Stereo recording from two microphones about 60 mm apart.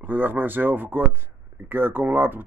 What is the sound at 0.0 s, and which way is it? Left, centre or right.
Speech, right.